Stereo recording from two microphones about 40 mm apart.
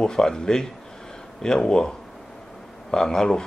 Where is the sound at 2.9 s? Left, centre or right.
Centre.